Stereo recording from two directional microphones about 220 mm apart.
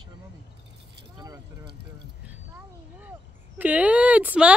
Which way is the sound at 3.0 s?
5° right (ahead or behind).